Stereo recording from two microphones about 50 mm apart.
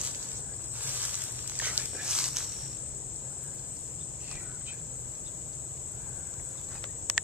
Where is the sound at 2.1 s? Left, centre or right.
Centre.